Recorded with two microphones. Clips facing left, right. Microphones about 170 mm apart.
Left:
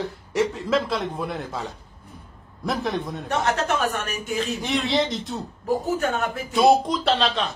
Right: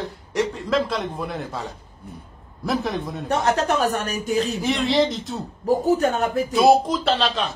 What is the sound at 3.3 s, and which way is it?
Speech, 35° right (ahead or behind).